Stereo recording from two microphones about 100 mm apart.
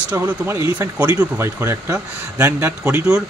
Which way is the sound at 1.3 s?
25° right (ahead or behind).